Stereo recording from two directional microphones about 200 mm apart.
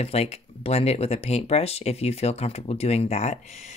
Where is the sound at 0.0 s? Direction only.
30° left (ahead or behind).